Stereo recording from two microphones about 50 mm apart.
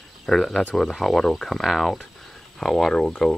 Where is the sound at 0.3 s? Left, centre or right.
Centre.